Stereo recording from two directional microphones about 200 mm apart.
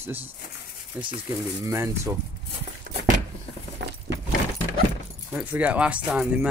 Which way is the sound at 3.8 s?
55° right (ahead or behind).